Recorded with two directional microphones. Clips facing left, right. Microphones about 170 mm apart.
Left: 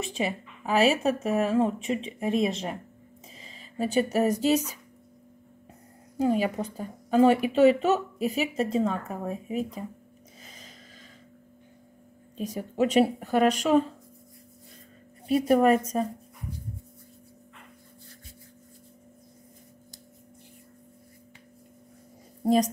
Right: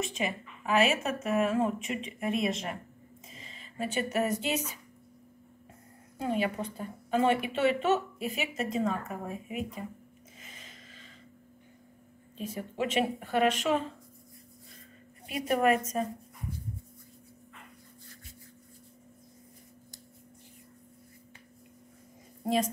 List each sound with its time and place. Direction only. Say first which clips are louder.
0.7 s a woman's voice: left 4 dB; 35° left (ahead or behind)
6.1 s a woman's voice: left 6 dB; 40° left (ahead or behind)
10.4 s a sound: left 2 dB; 40° left (ahead or behind)
12.4 s a woman's voice: left 7 dB; 40° left (ahead or behind)
15.2 s a woman's voice: left 6 dB; 35° left (ahead or behind)
22.4 s a woman's voice: left 6 dB; 40° left (ahead or behind)